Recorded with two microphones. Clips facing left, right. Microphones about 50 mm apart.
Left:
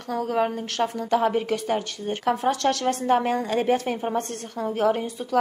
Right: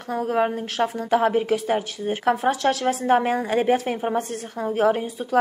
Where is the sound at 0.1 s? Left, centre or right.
Right.